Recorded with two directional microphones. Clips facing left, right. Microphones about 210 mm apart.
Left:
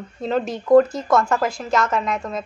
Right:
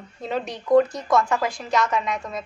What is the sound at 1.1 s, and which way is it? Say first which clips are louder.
Speech: left 2 dB; 45° left (ahead or behind).